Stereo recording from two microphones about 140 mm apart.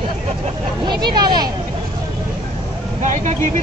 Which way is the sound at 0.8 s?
30° right (ahead or behind).